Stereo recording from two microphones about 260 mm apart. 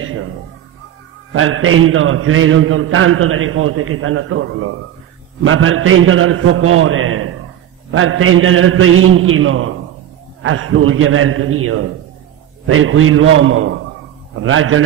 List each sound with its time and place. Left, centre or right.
1.3 s a man's voice: right